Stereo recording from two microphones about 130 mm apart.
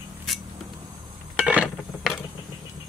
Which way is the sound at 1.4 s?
10° right (ahead or behind).